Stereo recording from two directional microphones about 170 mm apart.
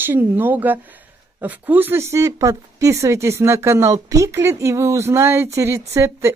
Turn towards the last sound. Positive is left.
turn(degrees=-15)  # may be behind; listen again after turning